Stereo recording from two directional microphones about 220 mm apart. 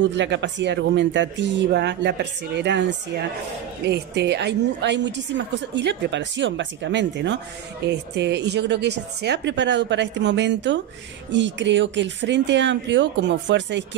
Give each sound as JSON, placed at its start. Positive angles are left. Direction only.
{"t": 0.0, "sound": "a woman's voice", "side_deg": -55}